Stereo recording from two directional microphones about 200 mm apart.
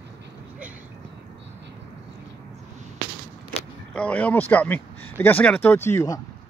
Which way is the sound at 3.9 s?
5° left (ahead or behind).